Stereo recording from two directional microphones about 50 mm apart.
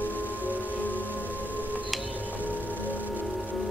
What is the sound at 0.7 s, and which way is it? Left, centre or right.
Singing bowl, left.